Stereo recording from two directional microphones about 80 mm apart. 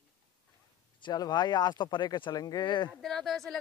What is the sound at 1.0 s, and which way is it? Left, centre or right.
Speech, left.